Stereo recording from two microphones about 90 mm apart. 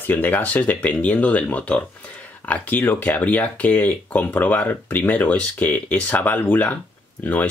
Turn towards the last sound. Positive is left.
turn(degrees=15)  # may be behind; listen again after turning